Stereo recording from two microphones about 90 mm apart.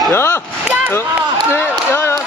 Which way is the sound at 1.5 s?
30° left (ahead or behind).